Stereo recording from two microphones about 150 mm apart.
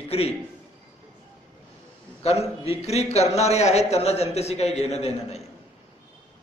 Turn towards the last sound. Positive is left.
turn(degrees=45)  # may be behind; listen again after turning